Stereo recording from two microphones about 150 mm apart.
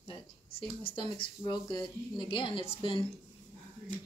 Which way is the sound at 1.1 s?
30° left (ahead or behind).